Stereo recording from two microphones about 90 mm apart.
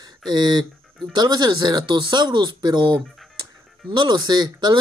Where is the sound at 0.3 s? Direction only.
50° right (ahead or behind).